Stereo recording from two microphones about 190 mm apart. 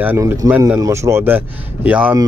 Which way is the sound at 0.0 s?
10° right (ahead or behind).